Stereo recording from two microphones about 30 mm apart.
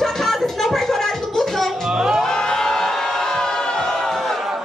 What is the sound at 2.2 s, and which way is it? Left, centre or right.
Crowd, left.